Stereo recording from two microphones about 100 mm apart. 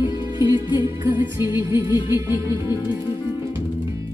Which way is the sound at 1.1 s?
25° right (ahead or behind).